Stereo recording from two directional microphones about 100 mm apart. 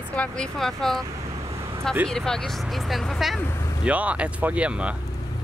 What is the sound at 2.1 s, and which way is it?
Speech, 5° left (ahead or behind).